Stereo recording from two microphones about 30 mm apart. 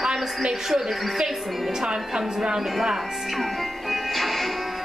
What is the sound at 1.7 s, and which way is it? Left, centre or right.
Speech, centre.